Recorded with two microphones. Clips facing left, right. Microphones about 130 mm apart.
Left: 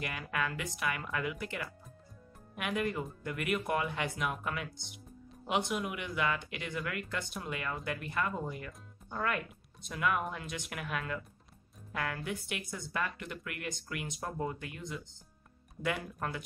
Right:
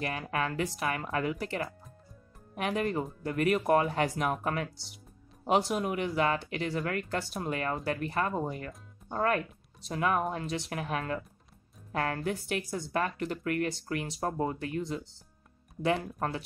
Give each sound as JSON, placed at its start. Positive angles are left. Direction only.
{"t": 0.0, "sound": "a woman's voice", "side_deg": -35}